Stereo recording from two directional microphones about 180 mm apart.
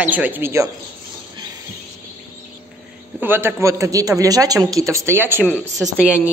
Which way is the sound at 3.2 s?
10° right (ahead or behind).